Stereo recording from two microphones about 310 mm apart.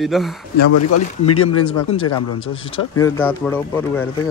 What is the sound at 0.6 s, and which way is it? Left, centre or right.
Speech, left.